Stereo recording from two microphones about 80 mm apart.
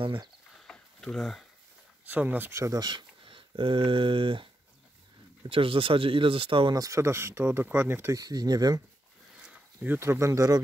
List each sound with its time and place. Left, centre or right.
0.0 s speech: right
0.6 s a sound: centre
2.0 s speech: right
2.5 s speech: right
2.8 s speech: right
5.6 s speech: right
6.7 s speech: right
8.1 s speech: right
9.4 s a sound: centre
9.9 s speech: right